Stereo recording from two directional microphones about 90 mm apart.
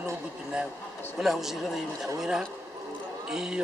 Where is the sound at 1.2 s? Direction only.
5° right (ahead or behind).